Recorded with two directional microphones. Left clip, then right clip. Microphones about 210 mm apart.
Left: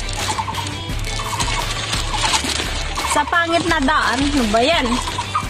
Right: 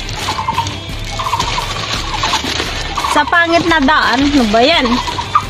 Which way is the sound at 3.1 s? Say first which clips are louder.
Right 6 dB; 5° left (ahead or behind).